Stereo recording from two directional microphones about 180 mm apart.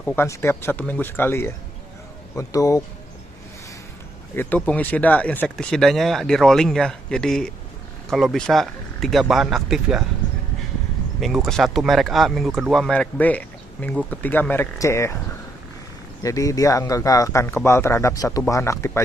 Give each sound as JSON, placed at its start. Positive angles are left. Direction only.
{"t": 0.0, "sound": "speech", "side_deg": 10}
{"t": 4.4, "sound": "speech", "side_deg": 10}
{"t": 11.1, "sound": "speech", "side_deg": 0}
{"t": 16.2, "sound": "speech", "side_deg": 20}